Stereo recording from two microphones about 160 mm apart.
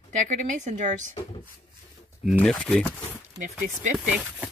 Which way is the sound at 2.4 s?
5° left (ahead or behind).